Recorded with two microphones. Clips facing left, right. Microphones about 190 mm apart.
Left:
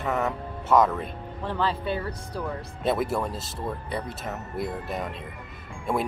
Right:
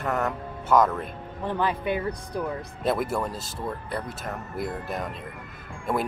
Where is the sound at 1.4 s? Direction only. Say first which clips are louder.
Right 1 dB; 15° right (ahead or behind).